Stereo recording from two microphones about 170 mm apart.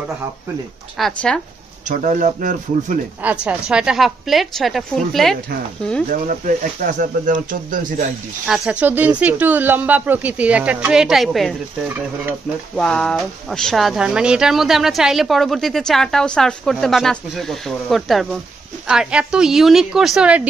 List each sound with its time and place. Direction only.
0.9 s speech: 5° left (ahead or behind)
1.9 s speech: 50° right (ahead or behind)
3.2 s speech: 10° right (ahead or behind)
6.0 s speech: 55° right (ahead or behind)
8.5 s speech: 5° right (ahead or behind)